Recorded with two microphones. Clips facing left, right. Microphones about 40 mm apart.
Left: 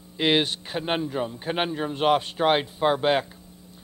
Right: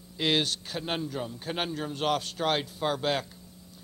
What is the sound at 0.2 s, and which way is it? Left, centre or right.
A man's voice, left.